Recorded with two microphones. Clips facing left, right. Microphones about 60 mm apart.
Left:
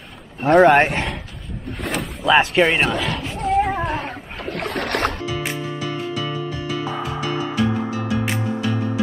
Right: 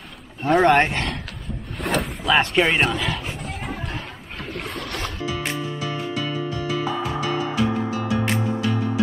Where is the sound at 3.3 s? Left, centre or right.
Left.